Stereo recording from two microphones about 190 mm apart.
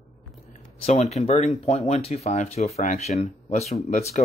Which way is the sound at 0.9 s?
35° left (ahead or behind).